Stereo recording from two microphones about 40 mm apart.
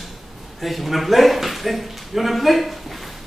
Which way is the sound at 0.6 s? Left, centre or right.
Centre.